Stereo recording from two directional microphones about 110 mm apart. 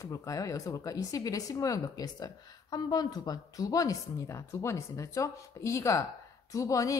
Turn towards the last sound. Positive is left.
turn(degrees=30)  # may be behind; listen again after turning